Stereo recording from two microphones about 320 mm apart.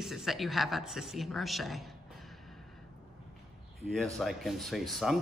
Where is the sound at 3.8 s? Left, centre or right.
Centre.